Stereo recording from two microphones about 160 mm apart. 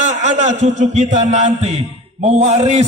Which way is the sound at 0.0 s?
45° right (ahead or behind).